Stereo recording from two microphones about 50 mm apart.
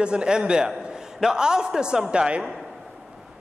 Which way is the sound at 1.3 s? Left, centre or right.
Centre.